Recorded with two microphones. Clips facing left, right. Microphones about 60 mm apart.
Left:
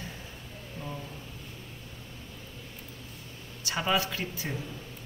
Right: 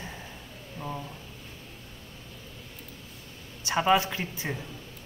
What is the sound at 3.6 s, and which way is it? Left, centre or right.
Speech, right.